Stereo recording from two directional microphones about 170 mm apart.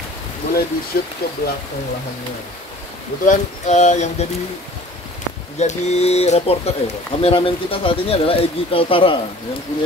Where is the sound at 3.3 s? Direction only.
45° left (ahead or behind).